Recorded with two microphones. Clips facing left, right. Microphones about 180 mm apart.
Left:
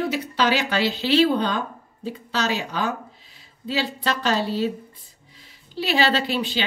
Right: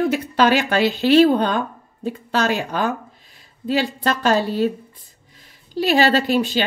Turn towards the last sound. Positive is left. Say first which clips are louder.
# right 6 dB
turn(degrees=-45)  # may be behind; listen again after turning